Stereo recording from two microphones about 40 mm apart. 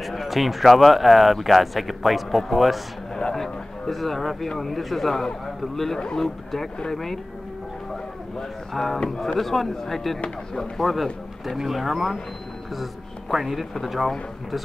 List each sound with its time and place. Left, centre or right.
0.0 s speech: centre
5.9 s speech: left
6.2 s speech: centre
8.7 s speech: centre
13.3 s speech: centre